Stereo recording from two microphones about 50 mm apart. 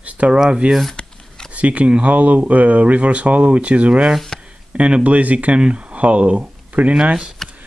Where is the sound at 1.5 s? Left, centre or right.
Right.